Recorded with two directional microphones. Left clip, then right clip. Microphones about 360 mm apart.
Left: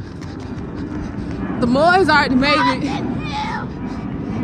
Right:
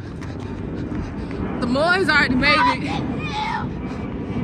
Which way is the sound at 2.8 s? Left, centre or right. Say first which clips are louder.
Left 3 dB; centre.